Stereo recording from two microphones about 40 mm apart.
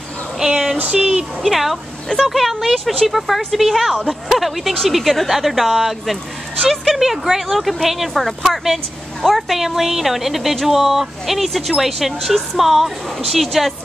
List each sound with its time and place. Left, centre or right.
0.4 s speech: centre
0.9 s speech: centre
1.4 s a woman's voice: centre
2.0 s speech: centre
2.3 s a woman's voice: centre
7.0 s a woman's voice: centre